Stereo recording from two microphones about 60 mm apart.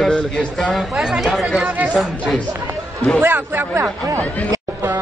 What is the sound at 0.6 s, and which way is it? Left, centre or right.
A man's voice, centre.